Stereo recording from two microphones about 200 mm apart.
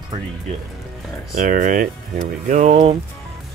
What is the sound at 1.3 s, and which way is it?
Speech, 45° right (ahead or behind).